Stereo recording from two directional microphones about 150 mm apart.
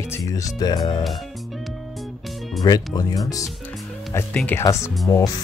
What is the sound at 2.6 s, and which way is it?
Speech, 25° left (ahead or behind).